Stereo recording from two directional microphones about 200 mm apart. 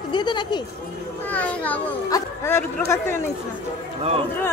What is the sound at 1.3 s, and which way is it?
Speech, 5° left (ahead or behind).